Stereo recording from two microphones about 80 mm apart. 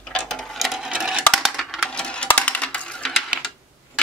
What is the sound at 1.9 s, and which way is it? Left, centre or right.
Coin, centre.